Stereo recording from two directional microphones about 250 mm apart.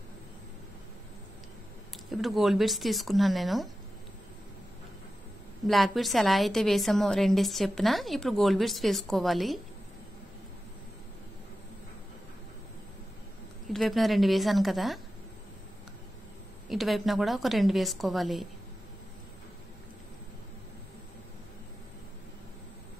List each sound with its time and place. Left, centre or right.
2.0 s a woman's voice: centre
5.7 s a woman's voice: centre
13.7 s a woman's voice: centre
16.6 s a woman's voice: centre